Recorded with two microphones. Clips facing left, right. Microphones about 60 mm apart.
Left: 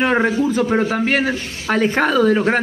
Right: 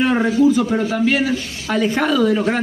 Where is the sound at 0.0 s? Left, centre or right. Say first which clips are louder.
Right 2 dB; left.